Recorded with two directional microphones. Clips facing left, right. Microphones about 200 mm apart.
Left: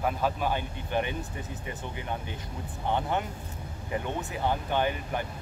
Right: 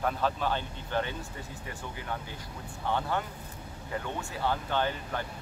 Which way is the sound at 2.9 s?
20° left (ahead or behind).